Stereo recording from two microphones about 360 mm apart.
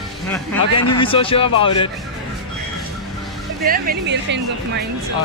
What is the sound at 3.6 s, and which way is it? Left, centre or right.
Speech, right.